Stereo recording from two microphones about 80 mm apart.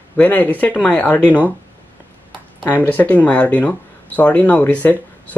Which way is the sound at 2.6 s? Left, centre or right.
Left.